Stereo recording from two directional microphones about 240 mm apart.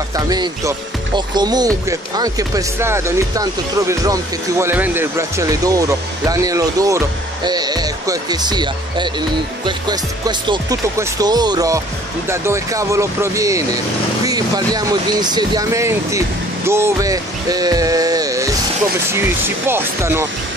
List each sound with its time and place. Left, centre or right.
0.1 s speech: centre